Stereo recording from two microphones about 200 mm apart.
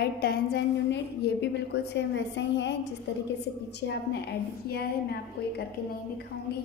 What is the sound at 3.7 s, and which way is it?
A woman's voice, 55° left (ahead or behind).